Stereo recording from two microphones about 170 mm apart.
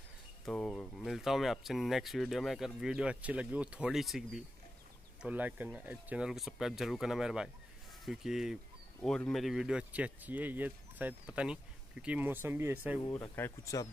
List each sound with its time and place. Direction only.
0.5 s speech: 5° left (ahead or behind); by 13.0 s 10° right (ahead or behind)
13.0 s speech: 20° left (ahead or behind)